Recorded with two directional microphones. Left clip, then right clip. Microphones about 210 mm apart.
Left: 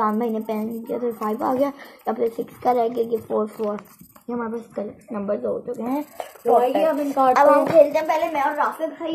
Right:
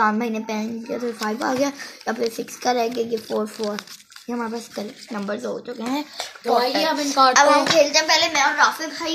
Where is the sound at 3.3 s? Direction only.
25° right (ahead or behind).